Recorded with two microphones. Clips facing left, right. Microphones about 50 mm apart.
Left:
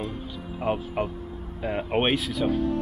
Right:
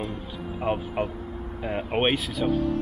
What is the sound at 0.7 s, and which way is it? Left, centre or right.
Speech, centre.